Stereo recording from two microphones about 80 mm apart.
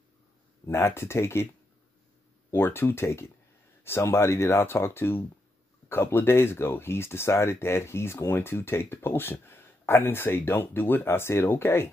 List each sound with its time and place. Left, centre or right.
0.7 s speech: left
2.5 s speech: left